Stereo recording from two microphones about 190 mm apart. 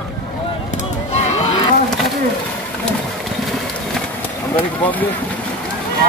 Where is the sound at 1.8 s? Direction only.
Centre (ahead or behind).